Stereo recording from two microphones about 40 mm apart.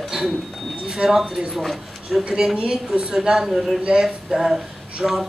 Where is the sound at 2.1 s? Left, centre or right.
Centre.